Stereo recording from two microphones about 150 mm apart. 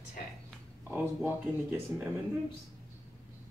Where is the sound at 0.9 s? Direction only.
10° right (ahead or behind).